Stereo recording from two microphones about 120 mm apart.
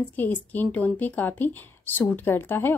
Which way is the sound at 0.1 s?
15° left (ahead or behind).